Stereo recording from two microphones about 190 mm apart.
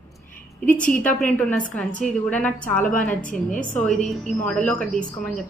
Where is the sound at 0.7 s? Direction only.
45° left (ahead or behind).